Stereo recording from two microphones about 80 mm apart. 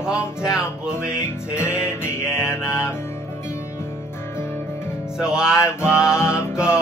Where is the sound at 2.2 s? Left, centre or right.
Centre.